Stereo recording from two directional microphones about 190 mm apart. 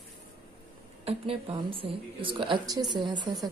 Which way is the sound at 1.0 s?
30° right (ahead or behind).